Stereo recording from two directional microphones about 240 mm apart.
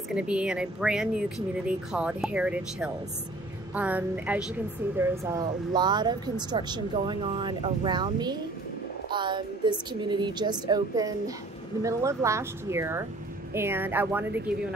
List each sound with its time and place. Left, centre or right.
0.1 s a woman's voice: centre